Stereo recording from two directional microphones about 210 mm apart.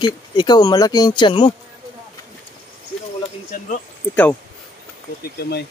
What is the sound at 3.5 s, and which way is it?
Speech, 35° left (ahead or behind).